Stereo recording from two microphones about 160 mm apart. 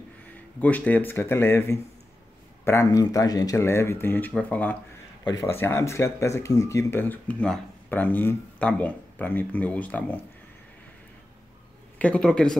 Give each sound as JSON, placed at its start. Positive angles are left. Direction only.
{"t": 0.3, "sound": "speech", "side_deg": 10}
{"t": 5.2, "sound": "speech", "side_deg": 20}
{"t": 12.0, "sound": "speech", "side_deg": 5}